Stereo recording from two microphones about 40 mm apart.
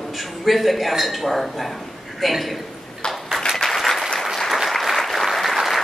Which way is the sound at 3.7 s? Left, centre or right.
Centre.